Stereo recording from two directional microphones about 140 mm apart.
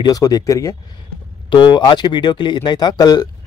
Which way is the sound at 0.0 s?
25° left (ahead or behind).